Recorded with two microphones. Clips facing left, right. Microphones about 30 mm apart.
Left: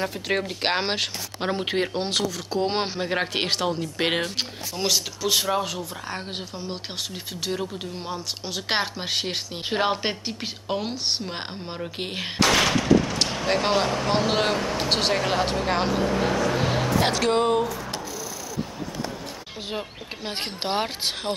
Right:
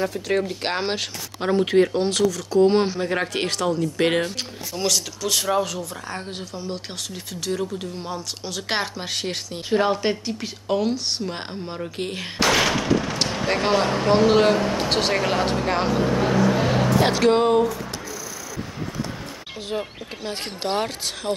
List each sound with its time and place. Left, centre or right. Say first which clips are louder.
0.0 s speech: right 3 dB; centre
12.4 s a sound: right 1 dB; centre
13.8 s speech: right 4 dB; centre
14.1 s speech: right 8 dB; centre
16.7 s vehicle: right 3 dB; centre
17.1 s speech: right 4 dB; centre
20.2 s speech: right 1 dB; centre